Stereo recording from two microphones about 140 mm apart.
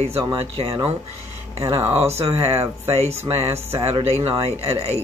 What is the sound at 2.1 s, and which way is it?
Speech, 45° right (ahead or behind).